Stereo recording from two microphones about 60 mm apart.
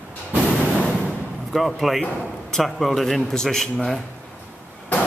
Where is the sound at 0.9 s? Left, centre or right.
Centre.